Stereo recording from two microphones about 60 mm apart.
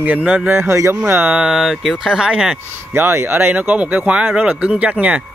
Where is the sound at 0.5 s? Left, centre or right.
Right.